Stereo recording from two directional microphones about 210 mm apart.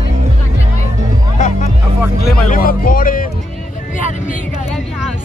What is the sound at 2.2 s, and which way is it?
Speech, 45° left (ahead or behind).